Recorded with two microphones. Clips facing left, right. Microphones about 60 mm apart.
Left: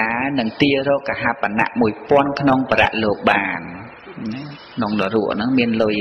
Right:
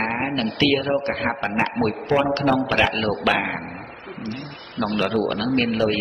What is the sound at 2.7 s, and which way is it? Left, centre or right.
Speech, left.